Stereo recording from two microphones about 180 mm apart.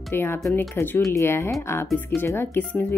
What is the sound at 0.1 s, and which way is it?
Speech, 10° left (ahead or behind).